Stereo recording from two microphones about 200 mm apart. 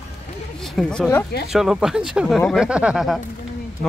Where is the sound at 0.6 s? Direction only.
Centre (ahead or behind).